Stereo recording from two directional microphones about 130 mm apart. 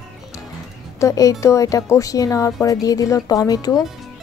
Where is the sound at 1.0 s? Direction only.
25° left (ahead or behind).